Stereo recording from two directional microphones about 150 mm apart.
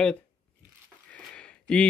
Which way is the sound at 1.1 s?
5° left (ahead or behind).